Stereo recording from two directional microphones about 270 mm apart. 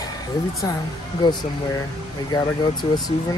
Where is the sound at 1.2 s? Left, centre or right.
Centre.